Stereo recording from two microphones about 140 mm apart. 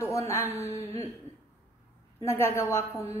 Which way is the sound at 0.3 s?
20° left (ahead or behind).